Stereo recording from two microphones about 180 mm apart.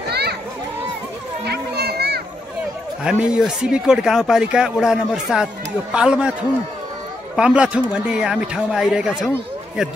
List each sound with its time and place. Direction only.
0.1 s a sound: 65° right (ahead or behind)
1.4 s children playing: 65° right (ahead or behind)
3.0 s speech: 5° right (ahead or behind)
7.3 s speech: 5° right (ahead or behind)